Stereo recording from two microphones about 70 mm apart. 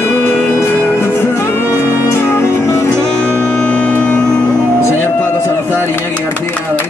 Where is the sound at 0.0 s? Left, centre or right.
Left.